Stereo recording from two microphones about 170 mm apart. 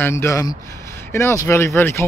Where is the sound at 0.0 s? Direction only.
15° left (ahead or behind).